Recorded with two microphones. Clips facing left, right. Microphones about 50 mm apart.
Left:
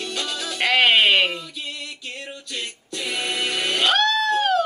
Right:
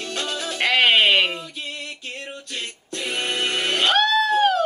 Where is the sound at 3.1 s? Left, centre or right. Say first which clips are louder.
Right 1 dB; right.